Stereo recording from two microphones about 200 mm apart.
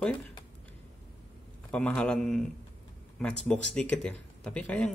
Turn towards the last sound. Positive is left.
turn(degrees=5)  # may be behind; listen again after turning